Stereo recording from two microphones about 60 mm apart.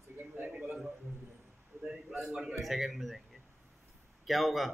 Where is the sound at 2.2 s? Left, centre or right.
Centre.